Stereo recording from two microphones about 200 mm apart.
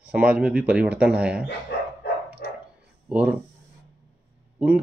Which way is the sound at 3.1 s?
5° right (ahead or behind).